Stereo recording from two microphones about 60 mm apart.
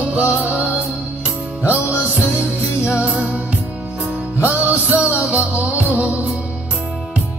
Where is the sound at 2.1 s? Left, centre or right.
Centre; by 6.2 s right.